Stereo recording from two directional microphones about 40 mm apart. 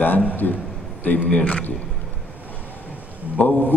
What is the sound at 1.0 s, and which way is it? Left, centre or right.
Speech, left.